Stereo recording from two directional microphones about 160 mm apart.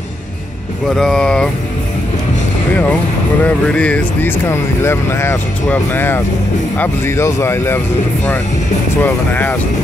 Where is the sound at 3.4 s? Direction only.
10° left (ahead or behind).